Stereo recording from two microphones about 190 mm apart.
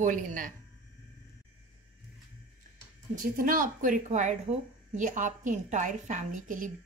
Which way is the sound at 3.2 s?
45° right (ahead or behind).